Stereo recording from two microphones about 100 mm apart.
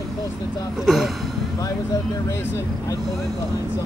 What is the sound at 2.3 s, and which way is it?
Speech, 30° left (ahead or behind).